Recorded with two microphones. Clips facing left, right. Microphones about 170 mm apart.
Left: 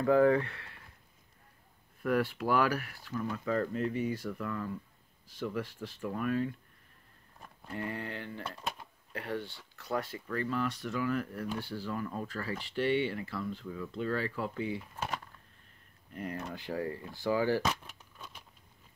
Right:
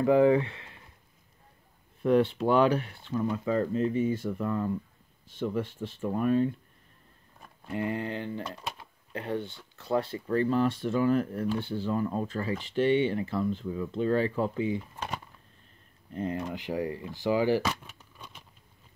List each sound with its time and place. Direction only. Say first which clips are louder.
0.0 s speech: right 3 dB; 20° right (ahead or behind)
2.0 s speech: right 6 dB; 25° right (ahead or behind)
7.6 s speech: right 7 dB; 20° right (ahead or behind)
8.5 s a sound: even; 5° right (ahead or behind)
9.1 s speech: right 5 dB; 25° right (ahead or behind)
16.1 s speech: right 6 dB; 25° right (ahead or behind)
17.6 s a sound: right 1 dB; centre (ahead or behind)